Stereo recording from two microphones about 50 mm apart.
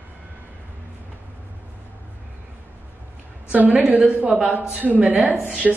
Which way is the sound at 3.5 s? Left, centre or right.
Right.